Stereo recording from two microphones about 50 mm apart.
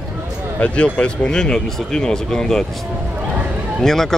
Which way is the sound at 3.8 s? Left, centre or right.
Centre.